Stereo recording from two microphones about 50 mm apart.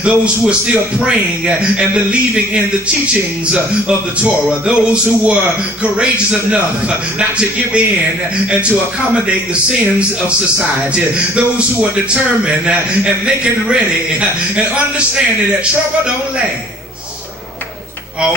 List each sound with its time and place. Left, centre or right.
0.0 s a man's voice: right
4.6 s a man's voice: right
7.2 s a man's voice: centre
9.7 s a man's voice: right